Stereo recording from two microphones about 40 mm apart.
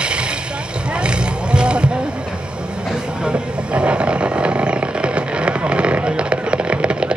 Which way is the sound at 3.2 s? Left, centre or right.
Right.